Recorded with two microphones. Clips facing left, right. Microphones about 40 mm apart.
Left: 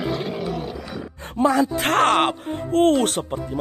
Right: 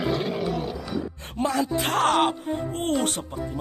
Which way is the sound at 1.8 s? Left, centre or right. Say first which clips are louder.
Left 2 dB; left.